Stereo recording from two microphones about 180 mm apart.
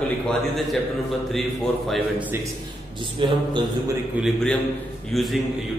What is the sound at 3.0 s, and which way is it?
Music, 25° right (ahead or behind).